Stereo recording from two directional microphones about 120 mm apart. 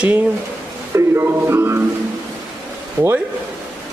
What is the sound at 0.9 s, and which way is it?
Speech, 20° right (ahead or behind).